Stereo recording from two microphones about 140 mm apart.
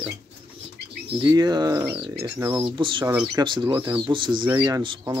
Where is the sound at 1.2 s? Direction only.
30° right (ahead or behind).